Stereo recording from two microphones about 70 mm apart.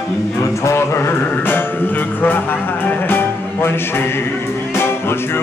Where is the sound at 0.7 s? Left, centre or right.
Left.